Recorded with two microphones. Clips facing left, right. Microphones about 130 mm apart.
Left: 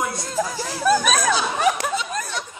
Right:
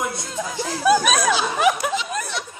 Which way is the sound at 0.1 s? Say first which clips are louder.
Left 3 dB; 40° left (ahead or behind).